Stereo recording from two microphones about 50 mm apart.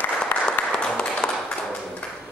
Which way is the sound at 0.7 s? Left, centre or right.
Centre.